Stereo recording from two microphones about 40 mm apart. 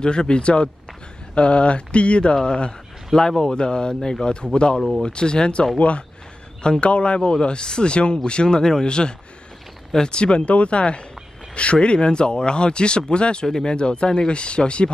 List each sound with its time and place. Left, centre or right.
0.0 s speech: left